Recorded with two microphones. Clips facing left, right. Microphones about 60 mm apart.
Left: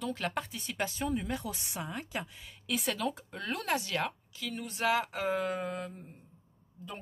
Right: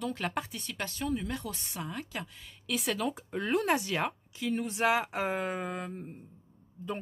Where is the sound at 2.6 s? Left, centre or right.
Centre.